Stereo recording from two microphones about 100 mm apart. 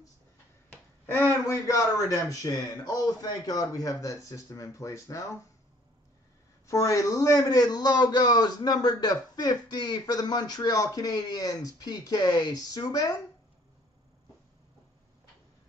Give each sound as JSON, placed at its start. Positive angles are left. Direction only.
{"t": 1.4, "sound": "a man's voice", "side_deg": 35}
{"t": 6.7, "sound": "a man's voice", "side_deg": 30}